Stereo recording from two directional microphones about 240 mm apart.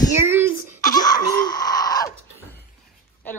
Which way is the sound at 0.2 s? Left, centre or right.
Centre.